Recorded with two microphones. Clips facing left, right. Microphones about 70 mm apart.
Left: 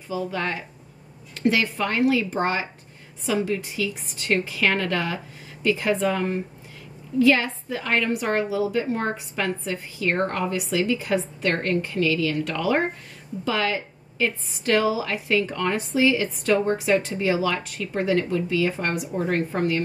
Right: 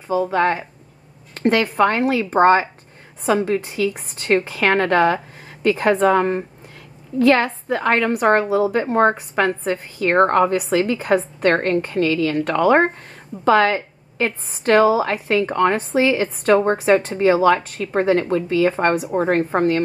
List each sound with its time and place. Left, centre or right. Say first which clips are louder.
0.1 s a woman's voice: right 9 dB; right